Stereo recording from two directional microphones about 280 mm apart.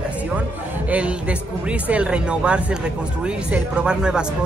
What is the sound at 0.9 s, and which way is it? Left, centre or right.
A man's voice, centre.